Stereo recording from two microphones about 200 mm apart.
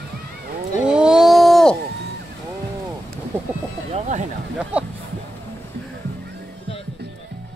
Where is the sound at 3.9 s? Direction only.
35° right (ahead or behind).